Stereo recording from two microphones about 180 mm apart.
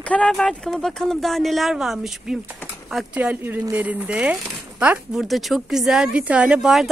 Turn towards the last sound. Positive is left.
turn(degrees=-5)  # may be behind; listen again after turning